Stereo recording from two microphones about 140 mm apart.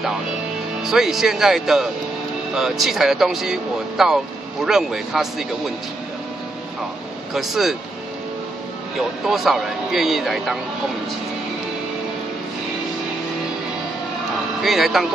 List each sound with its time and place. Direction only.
0.8 s speech: 5° right (ahead or behind)
7.3 s speech: centre (ahead or behind)
8.9 s speech: centre (ahead or behind)
14.6 s speech: centre (ahead or behind)